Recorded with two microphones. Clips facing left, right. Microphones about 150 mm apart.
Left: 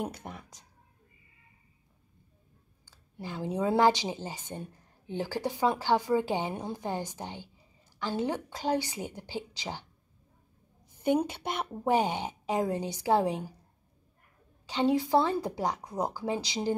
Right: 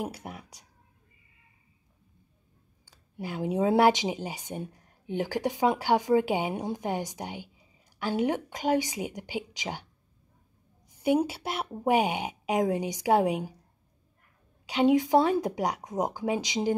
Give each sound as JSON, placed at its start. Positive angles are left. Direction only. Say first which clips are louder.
{"t": 0.0, "sound": "speech", "louder": "right 1 dB", "side_deg": -5}
{"t": 2.9, "sound": "speech", "louder": "right 3 dB", "side_deg": -15}
{"t": 11.0, "sound": "speech", "louder": "right 2 dB", "side_deg": -10}
{"t": 14.7, "sound": "speech", "louder": "right 4 dB", "side_deg": -15}